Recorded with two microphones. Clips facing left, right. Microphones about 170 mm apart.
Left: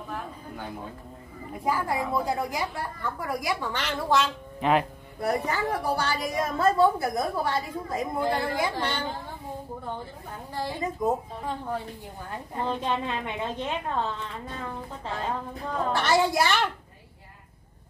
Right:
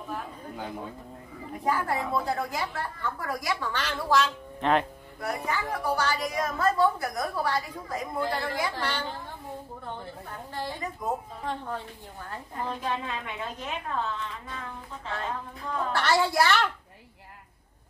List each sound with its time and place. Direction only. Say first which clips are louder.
1.6 s a woman's voice: left 1 dB; 10° left (ahead or behind)
4.6 s speech: left 1 dB; 5° left (ahead or behind)
5.2 s a woman's voice: left 4 dB; 35° left (ahead or behind)
10.5 s a woman's voice: left 4 dB; 10° left (ahead or behind)
12.3 s a woman's voice: left 4 dB; 25° left (ahead or behind)
15.9 s a woman's voice: left 2 dB; 20° left (ahead or behind)